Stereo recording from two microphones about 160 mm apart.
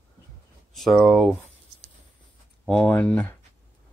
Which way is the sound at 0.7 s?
Centre (ahead or behind).